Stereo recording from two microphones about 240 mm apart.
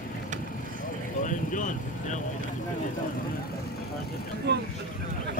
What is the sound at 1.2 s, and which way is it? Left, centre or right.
Speech, left.